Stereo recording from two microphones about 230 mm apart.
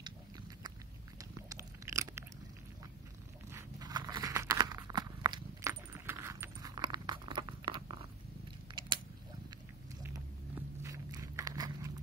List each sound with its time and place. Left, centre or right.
0.7 s biting: centre
3.5 s a sound: centre
10.0 s biting: centre